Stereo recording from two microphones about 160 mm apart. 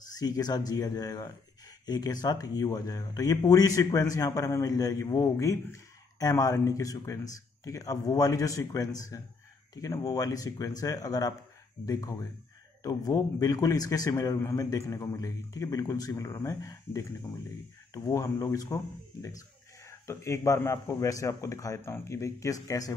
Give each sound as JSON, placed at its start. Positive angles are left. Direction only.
{"t": 0.1, "sound": "speech", "side_deg": 25}